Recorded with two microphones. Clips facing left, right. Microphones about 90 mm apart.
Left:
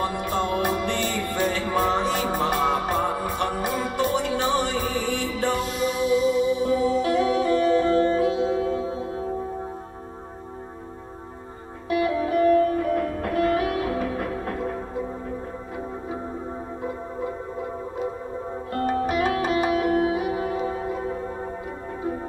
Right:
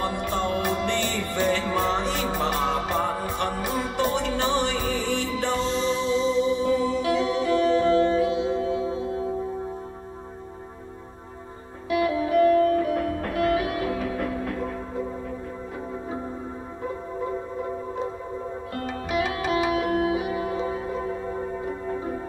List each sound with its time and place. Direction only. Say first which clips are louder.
0.0 s music: left 1 dB; 45° left (ahead or behind)
5.5 s music: right 2 dB; 30° right (ahead or behind)
6.6 s music: left 2 dB; 45° left (ahead or behind)
11.9 s sitar: even; 45° left (ahead or behind)
12.7 s music: even; 40° left (ahead or behind)
18.7 s music: left 7 dB; 45° left (ahead or behind)